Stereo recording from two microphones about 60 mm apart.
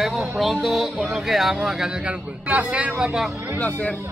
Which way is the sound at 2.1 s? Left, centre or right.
Right.